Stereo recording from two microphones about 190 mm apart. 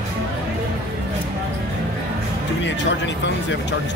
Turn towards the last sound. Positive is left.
turn(degrees=70)  # may be behind; listen again after turning